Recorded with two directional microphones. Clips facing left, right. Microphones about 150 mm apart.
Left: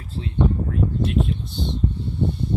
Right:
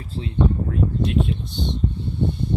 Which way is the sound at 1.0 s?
Centre (ahead or behind).